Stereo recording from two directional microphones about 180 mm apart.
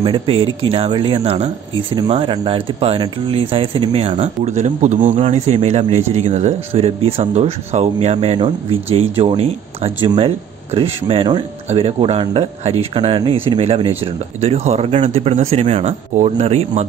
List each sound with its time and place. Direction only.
0.0 s speech: 30° right (ahead or behind)